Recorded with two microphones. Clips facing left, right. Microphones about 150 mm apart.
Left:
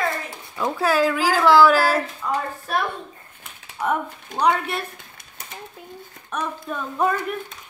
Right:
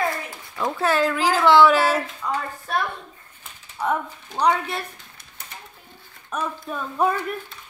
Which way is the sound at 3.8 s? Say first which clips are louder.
Left 1 dB; 5° left (ahead or behind).